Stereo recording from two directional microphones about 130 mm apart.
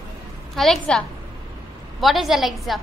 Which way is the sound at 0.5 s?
5° left (ahead or behind).